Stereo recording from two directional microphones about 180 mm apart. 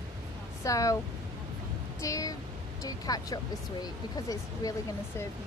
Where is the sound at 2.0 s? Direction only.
20° left (ahead or behind).